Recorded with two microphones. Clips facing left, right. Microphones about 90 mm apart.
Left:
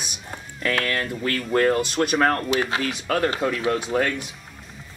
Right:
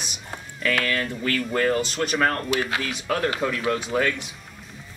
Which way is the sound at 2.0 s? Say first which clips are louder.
Left 4 dB; 20° left (ahead or behind).